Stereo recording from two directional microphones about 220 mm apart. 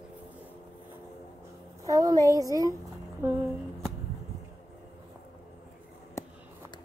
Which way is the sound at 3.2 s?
10° right (ahead or behind).